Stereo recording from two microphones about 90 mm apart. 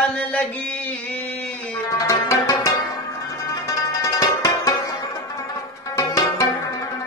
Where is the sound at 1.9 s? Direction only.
40° left (ahead or behind).